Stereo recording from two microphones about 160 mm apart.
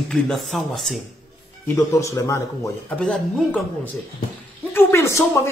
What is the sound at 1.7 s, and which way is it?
Speech, 20° left (ahead or behind).